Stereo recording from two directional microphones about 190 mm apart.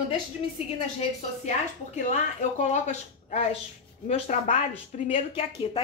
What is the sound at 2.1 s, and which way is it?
Speech, 40° left (ahead or behind).